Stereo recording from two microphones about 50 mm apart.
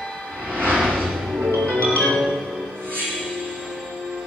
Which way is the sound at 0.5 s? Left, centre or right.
Right.